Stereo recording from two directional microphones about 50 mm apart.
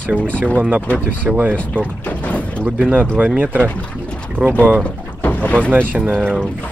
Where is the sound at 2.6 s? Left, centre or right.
Right.